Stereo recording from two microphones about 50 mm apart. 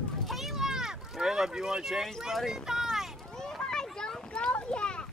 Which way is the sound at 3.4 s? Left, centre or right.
Centre.